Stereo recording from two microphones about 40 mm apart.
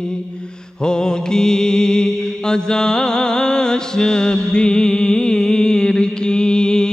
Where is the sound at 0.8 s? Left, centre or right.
Centre.